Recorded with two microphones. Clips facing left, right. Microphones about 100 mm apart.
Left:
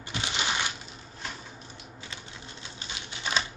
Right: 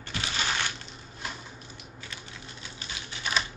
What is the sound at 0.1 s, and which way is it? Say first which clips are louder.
Crushing: left 1 dB; 20° left (ahead or behind).